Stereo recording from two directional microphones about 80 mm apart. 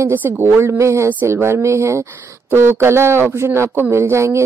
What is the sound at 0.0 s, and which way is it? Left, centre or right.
A woman's voice, right.